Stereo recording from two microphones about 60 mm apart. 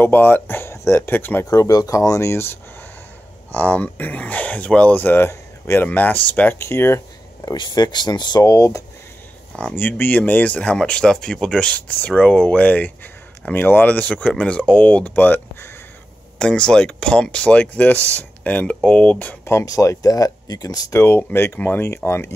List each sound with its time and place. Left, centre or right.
0.0 s speech: left
1.4 s speech: left
3.5 s speech: left
6.6 s speech: left
7.4 s speech: left
9.8 s speech: left
16.3 s speech: centre
19.6 s speech: left
20.9 s speech: left